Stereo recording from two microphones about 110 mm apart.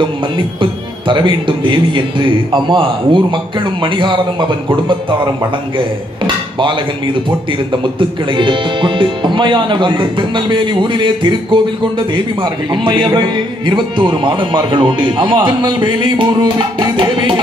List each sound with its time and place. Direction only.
0.0 s speech: 50° right (ahead or behind)